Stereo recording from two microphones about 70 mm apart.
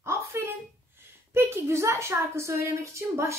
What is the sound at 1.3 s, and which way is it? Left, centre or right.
A child's voice, right.